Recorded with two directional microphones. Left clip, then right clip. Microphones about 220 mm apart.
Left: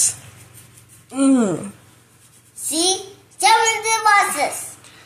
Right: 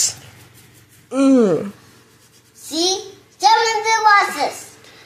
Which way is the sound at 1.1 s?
30° right (ahead or behind).